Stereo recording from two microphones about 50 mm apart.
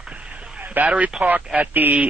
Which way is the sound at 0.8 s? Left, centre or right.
Right.